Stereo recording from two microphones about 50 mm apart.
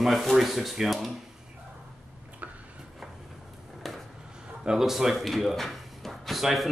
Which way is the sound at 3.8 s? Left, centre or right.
Centre.